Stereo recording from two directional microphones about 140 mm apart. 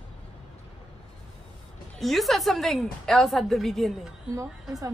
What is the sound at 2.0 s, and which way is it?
A woman's voice, centre (ahead or behind).